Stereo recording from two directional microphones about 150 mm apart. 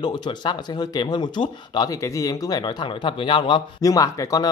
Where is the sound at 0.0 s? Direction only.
30° left (ahead or behind).